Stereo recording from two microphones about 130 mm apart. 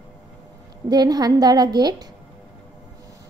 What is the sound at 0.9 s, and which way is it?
A woman's voice, 30° right (ahead or behind).